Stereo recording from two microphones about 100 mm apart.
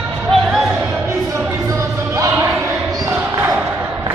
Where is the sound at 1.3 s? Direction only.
30° right (ahead or behind).